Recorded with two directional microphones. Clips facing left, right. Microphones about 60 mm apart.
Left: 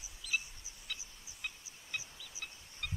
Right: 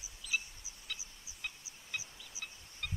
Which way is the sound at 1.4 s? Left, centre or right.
Centre.